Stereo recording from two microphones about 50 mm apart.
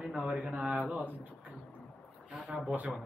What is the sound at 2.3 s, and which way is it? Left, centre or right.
Speech, centre.